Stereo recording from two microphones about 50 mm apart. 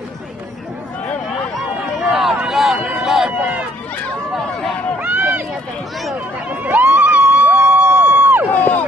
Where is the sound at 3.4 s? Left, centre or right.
Right.